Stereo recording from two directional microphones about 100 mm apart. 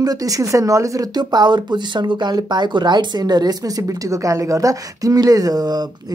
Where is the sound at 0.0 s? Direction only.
40° right (ahead or behind).